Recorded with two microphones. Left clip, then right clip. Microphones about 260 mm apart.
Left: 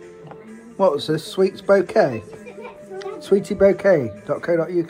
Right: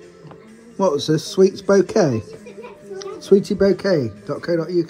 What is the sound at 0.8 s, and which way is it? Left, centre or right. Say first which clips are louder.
Speech: even; centre.